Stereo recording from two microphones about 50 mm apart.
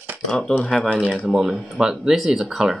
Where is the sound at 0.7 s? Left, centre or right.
Centre.